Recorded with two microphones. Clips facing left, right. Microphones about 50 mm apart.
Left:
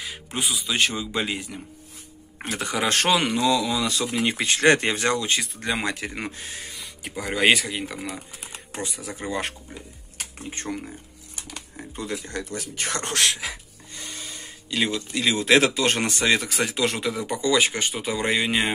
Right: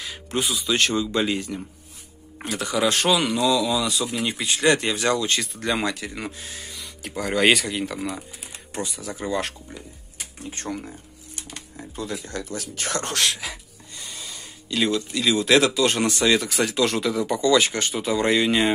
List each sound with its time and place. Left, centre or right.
0.0 s speech: centre
2.4 s speech: left
5.6 s speech: centre
5.9 s speech: left
7.2 s speech: centre
8.8 s speech: left
10.5 s speech: left
14.7 s speech: left